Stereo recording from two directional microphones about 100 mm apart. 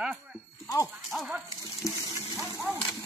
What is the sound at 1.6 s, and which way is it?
Water, 35° left (ahead or behind).